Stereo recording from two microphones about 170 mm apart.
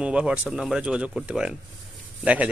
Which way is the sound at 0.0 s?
5° right (ahead or behind).